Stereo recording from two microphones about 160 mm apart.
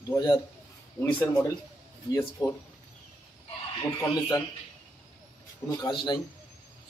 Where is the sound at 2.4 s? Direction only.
25° left (ahead or behind).